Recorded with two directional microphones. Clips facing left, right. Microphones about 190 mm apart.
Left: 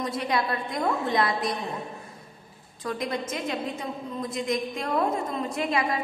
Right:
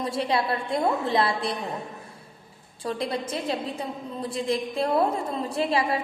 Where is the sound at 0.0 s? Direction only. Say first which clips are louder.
Right 2 dB; 30° right (ahead or behind).